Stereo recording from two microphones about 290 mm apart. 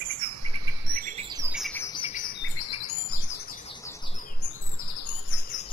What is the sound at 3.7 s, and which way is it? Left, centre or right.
Bird, centre.